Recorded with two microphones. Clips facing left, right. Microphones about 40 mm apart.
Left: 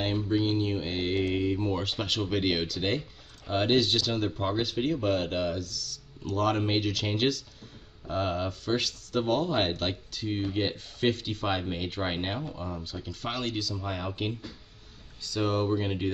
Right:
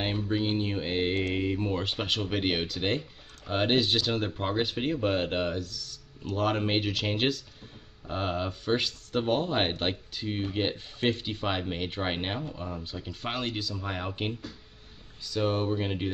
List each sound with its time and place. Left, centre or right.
0.3 s mantra: right
1.3 s a sound: centre
2.4 s speech: centre